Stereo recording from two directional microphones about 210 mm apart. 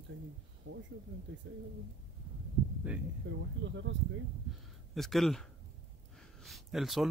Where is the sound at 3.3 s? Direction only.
60° right (ahead or behind).